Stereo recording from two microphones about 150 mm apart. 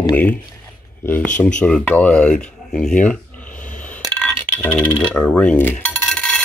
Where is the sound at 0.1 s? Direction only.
10° left (ahead or behind).